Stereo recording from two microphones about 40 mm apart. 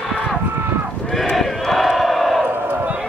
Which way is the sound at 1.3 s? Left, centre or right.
Centre.